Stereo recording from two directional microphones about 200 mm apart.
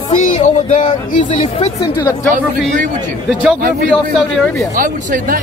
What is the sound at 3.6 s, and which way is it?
Speech, 45° right (ahead or behind).